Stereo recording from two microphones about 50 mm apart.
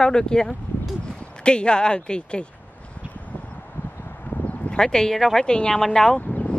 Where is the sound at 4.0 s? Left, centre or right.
Left.